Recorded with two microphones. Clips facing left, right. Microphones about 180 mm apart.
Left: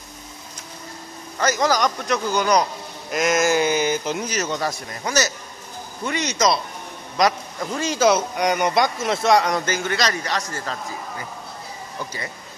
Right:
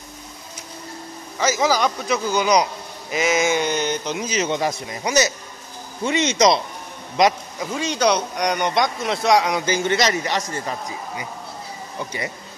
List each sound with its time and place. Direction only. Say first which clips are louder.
1.4 s a man's voice: right 1 dB; 5° right (ahead or behind)
4.4 s a man's voice: right 3 dB; 20° right (ahead or behind)
7.7 s a man's voice: left 1 dB; centre (ahead or behind)
9.7 s a man's voice: right 3 dB; 20° right (ahead or behind)